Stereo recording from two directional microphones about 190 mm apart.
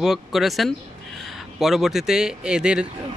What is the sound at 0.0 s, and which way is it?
Speech, centre (ahead or behind).